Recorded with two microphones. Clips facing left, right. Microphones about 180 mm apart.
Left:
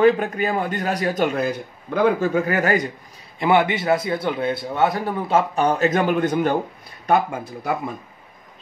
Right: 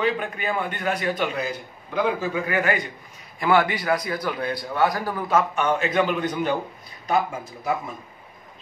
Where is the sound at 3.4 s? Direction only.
20° left (ahead or behind); by 6.5 s 50° left (ahead or behind).